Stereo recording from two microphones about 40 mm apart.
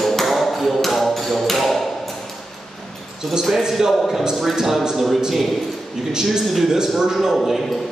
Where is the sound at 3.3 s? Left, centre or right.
Centre.